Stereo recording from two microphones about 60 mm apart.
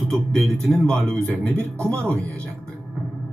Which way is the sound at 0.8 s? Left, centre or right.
Centre.